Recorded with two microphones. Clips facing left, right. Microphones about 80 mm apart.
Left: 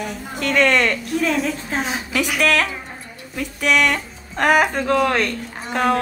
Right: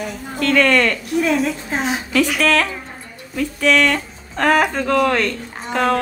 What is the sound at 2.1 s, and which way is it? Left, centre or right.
Speech, centre.